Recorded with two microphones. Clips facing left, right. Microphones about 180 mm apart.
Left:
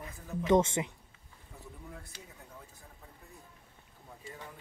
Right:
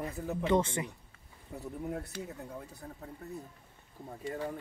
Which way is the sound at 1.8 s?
60° right (ahead or behind).